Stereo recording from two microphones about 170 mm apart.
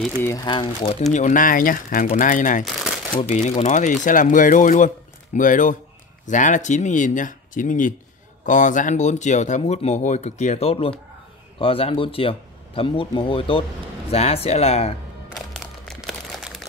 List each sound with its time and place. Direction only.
0.2 s speech: 20° left (ahead or behind)
1.1 s speech: 50° left (ahead or behind)
15.5 s a sound: centre (ahead or behind)